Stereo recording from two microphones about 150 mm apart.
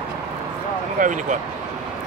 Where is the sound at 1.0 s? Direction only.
55° right (ahead or behind).